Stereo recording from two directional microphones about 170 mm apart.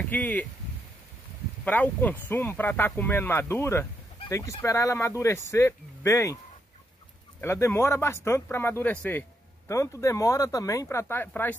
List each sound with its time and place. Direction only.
0.1 s speech: 10° left (ahead or behind)
1.6 s speech: 10° left (ahead or behind)
7.3 s speech: 15° left (ahead or behind)